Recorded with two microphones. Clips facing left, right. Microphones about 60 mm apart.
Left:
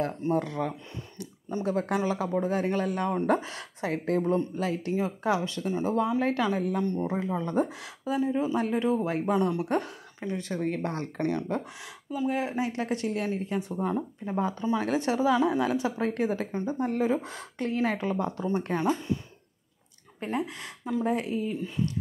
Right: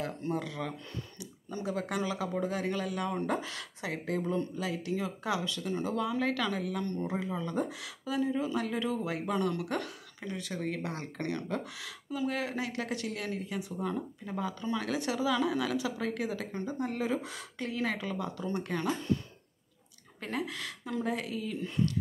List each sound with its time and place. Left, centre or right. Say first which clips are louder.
0.3 s speech: left 7 dB; left
6.8 s speech: left 6 dB; centre
7.1 s speech: left 5 dB; left
11.1 s speech: left 5 dB; left
20.3 s speech: left 2 dB; left
21.5 s speech: left 1 dB; centre